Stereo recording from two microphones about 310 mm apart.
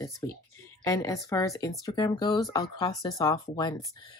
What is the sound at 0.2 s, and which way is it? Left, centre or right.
Speech, centre.